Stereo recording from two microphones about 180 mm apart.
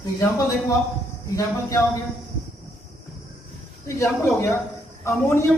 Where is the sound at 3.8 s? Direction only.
15° left (ahead or behind).